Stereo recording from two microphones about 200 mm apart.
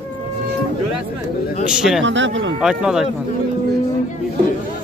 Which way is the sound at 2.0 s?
70° right (ahead or behind).